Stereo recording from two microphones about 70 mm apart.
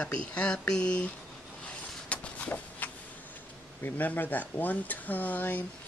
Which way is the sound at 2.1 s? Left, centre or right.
Centre.